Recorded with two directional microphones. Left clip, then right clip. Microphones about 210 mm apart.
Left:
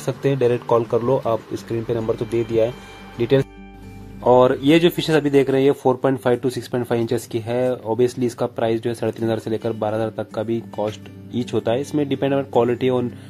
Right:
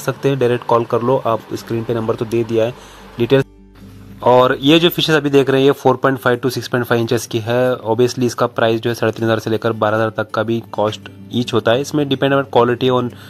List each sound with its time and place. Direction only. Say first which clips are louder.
0.0 s speech: right 3 dB; 5° right (ahead or behind)